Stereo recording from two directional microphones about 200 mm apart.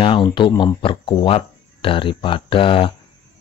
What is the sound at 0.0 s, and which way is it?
Speech, 25° left (ahead or behind).